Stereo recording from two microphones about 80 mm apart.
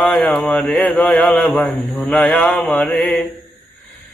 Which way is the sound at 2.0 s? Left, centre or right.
Centre.